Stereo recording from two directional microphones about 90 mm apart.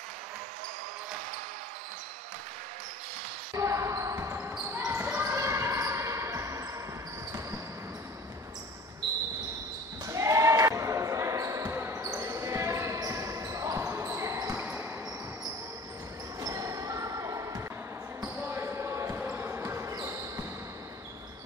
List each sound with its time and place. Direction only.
3.5 s basketball bounce: 35° right (ahead or behind)
10.0 s basketball bounce: 35° right (ahead or behind)
14.6 s basketball bounce: 20° right (ahead or behind)
16.3 s basketball bounce: 35° right (ahead or behind)
18.4 s basketball bounce: 25° right (ahead or behind)